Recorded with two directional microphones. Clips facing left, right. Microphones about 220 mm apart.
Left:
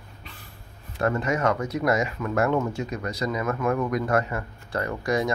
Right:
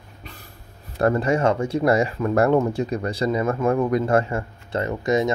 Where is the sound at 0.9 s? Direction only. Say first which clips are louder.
Right 5 dB; 35° right (ahead or behind).